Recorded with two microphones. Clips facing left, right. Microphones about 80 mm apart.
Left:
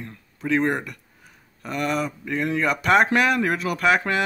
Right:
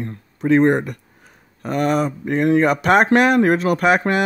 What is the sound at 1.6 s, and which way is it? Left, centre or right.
Speech, right.